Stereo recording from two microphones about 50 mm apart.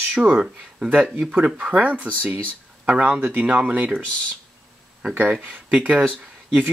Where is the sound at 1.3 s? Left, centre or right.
Right.